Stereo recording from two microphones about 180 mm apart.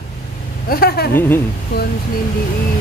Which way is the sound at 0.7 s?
60° left (ahead or behind).